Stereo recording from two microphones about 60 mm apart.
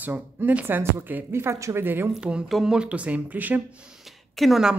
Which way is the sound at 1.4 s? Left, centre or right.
Right.